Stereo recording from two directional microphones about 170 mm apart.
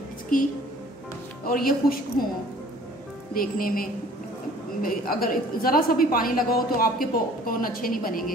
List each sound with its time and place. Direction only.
0.3 s a woman's voice: 55° left (ahead or behind)
3.3 s a woman's voice: 55° left (ahead or behind)